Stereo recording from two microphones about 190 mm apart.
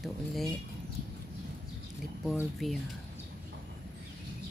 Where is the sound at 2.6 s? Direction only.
Centre (ahead or behind).